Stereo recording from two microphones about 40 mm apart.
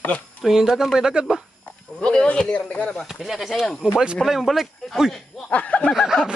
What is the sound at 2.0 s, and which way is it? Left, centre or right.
Speech, left.